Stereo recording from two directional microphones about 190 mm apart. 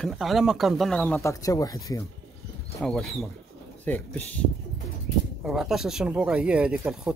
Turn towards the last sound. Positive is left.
turn(degrees=-5)  # may be behind; listen again after turning